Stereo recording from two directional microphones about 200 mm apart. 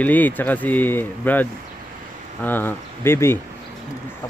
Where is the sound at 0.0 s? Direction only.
10° left (ahead or behind).